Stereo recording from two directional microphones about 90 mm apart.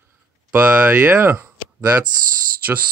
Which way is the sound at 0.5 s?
20° right (ahead or behind).